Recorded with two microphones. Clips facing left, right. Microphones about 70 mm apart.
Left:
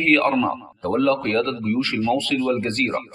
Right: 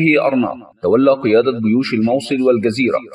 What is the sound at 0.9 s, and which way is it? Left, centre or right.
A man's voice, right.